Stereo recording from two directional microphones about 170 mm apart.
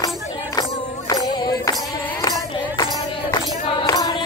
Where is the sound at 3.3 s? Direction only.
20° left (ahead or behind).